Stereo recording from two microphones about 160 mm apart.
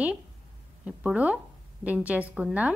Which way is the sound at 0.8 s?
10° right (ahead or behind).